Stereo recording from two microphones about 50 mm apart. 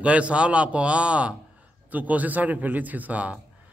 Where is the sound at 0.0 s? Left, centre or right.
Right.